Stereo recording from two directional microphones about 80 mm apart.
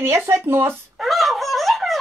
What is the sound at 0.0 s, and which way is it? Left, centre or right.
Speech, right.